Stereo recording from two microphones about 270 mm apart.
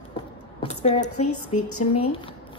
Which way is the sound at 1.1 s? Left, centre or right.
Left.